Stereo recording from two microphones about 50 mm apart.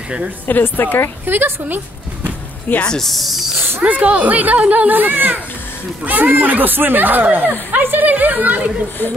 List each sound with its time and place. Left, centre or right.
0.5 s a woman's voice: left
1.2 s a woman's voice: right
2.7 s a woman's voice: left
3.0 s speech: centre
3.8 s a child's voice: right